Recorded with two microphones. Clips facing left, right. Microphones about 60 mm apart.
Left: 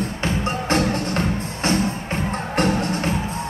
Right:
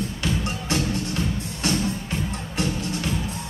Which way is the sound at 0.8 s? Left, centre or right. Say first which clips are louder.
Left 5 dB; left.